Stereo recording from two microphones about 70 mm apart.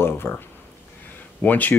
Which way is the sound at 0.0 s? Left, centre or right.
Left.